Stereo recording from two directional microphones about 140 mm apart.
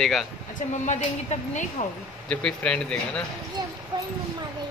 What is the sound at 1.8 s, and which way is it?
Speech, 55° left (ahead or behind).